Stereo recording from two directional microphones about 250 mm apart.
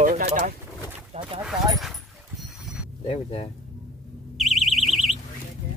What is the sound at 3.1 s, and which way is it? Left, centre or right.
Speech, left.